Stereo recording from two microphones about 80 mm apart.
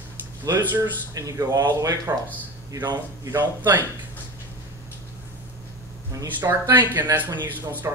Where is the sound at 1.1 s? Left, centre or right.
Right.